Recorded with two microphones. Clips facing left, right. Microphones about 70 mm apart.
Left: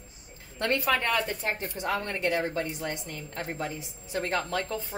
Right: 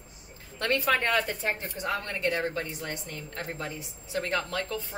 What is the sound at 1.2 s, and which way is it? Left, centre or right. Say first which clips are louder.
Speech: even; right.